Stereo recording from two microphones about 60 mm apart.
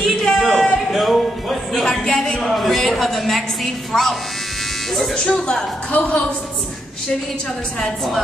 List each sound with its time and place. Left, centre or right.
0.0 s music: centre
2.4 s a woman's voice: centre; by 6.1 s left
7.8 s a woman's voice: centre